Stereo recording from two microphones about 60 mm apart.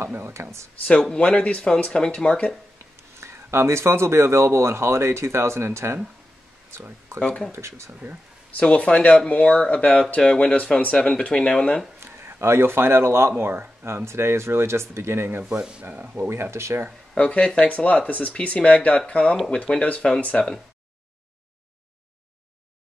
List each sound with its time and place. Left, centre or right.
0.1 s speech: right
1.2 s speech: centre
3.2 s speech: right
7.2 s speech: centre
7.5 s speech: right
8.5 s speech: left
10.2 s speech: centre
10.5 s speech: left
12.0 s speech: right
15.4 s speech: centre
16.2 s speech: right
17.2 s speech: left
19.3 s speech: centre
19.8 s speech: centre